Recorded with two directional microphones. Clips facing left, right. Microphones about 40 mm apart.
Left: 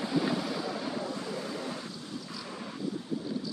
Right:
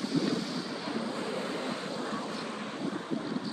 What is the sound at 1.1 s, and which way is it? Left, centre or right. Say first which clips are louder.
Vehicle: right 2 dB; right.